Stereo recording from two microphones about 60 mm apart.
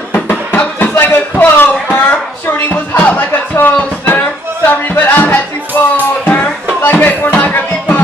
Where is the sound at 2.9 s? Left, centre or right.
Left.